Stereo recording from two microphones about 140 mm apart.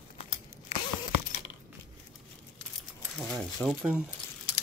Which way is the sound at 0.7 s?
50° left (ahead or behind).